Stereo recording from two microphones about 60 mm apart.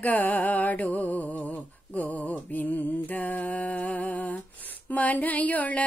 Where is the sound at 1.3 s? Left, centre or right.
Left.